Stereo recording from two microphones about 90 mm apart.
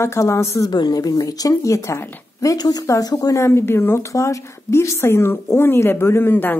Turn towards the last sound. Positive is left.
turn(degrees=25)  # may be behind; listen again after turning